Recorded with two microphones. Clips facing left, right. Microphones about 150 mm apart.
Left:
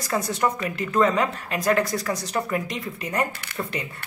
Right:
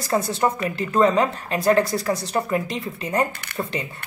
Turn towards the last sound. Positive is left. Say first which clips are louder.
# right 3 dB
turn(degrees=-25)  # may be behind; listen again after turning